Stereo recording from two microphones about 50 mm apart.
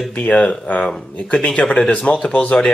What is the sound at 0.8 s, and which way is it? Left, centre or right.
Speech, centre.